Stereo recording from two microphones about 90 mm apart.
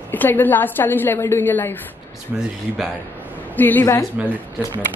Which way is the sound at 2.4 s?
5° right (ahead or behind).